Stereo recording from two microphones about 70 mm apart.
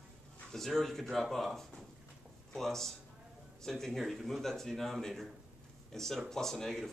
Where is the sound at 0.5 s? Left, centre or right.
Centre.